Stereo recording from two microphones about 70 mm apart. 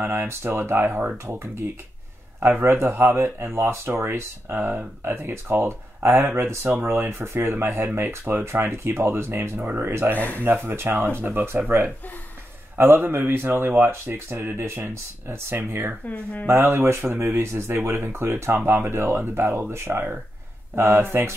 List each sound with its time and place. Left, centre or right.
0.0 s speech: right
9.6 s speech: right
10.1 s speech: left
10.4 s speech: right
12.7 s speech: right
16.1 s speech: left
16.4 s speech: right